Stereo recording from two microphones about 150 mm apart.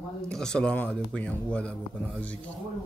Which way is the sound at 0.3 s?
5° left (ahead or behind).